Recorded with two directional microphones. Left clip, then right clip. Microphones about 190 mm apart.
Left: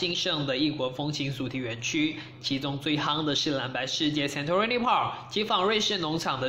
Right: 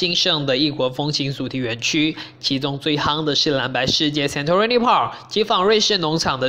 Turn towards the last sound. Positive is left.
turn(degrees=-35)  # may be behind; listen again after turning